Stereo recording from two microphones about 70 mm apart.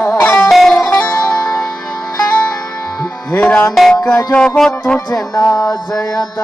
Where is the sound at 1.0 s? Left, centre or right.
Left.